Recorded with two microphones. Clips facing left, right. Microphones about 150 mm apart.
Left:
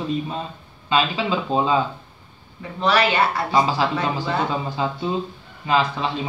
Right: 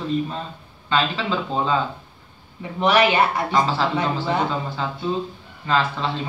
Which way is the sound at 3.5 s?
10° left (ahead or behind).